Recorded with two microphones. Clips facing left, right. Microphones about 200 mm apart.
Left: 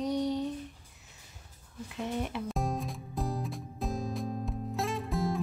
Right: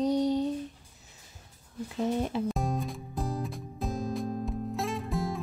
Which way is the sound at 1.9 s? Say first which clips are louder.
Right 5 dB; 35° right (ahead or behind).